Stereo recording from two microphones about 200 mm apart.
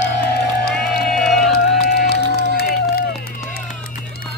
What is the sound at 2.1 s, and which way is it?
Run, 55° left (ahead or behind).